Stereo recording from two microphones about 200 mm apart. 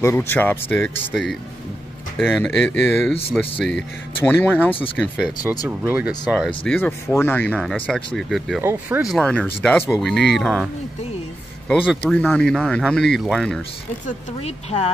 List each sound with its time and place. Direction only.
0.0 s speech: 10° left (ahead or behind)
5.0 s speech: 5° right (ahead or behind)
8.5 s speech: 10° right (ahead or behind)
11.7 s speech: 5° left (ahead or behind)
14.0 s speech: 35° left (ahead or behind)